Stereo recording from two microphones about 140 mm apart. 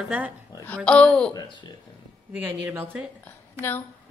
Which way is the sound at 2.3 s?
10° right (ahead or behind).